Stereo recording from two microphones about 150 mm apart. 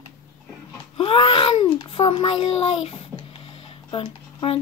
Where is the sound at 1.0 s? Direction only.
35° left (ahead or behind).